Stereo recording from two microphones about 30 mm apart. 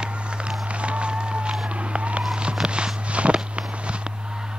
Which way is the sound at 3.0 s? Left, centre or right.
Right.